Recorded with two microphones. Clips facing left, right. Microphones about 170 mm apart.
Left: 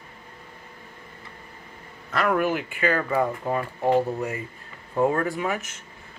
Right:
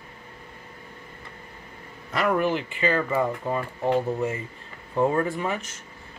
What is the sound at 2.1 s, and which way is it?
Speech, 5° right (ahead or behind).